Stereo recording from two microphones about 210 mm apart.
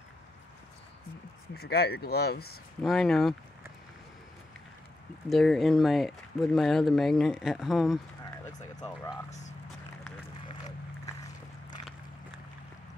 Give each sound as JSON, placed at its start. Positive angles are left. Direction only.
{"t": 1.5, "sound": "speech", "side_deg": 50}
{"t": 2.8, "sound": "speech", "side_deg": 0}
{"t": 5.3, "sound": "speech", "side_deg": 0}